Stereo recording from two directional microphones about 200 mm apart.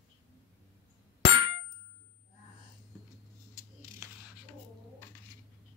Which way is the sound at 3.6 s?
15° right (ahead or behind).